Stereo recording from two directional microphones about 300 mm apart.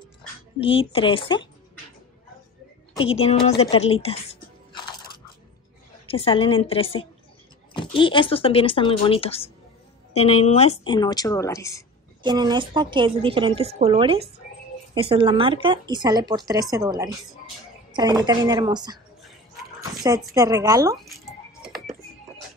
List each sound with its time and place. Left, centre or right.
0.6 s speech: centre
3.0 s a woman's voice: centre
4.0 s a sound: centre
6.0 s a woman's voice: centre
12.2 s a woman's voice: centre
21.0 s music: centre